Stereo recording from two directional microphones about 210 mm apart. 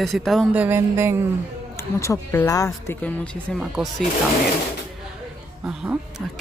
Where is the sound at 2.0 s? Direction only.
10° left (ahead or behind).